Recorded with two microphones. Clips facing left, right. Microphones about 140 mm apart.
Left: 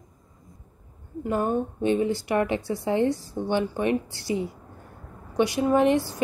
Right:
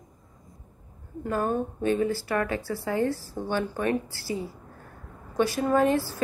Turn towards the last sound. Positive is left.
turn(degrees=20)  # may be behind; listen again after turning